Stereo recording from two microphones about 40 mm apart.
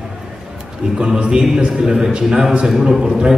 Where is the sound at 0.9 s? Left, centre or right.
Right.